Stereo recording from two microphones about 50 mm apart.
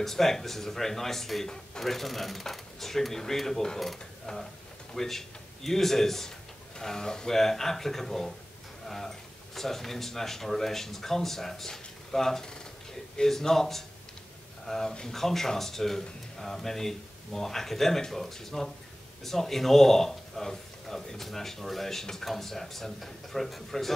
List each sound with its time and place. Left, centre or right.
0.0 s speech: centre
4.9 s a man's voice: centre